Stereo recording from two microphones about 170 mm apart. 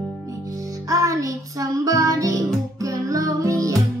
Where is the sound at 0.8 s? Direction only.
20° right (ahead or behind).